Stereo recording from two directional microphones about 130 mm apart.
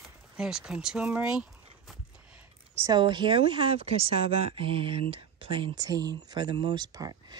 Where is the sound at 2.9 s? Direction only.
35° right (ahead or behind).